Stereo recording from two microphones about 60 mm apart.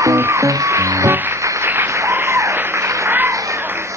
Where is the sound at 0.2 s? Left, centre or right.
Right.